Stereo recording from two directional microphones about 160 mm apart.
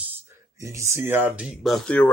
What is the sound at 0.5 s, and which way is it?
Speech, 20° right (ahead or behind).